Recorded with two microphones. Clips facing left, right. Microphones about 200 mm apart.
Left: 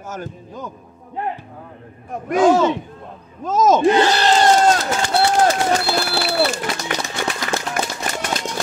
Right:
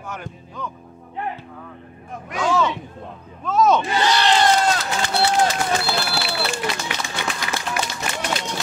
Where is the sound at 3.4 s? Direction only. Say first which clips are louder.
Left 3 dB; 40° left (ahead or behind).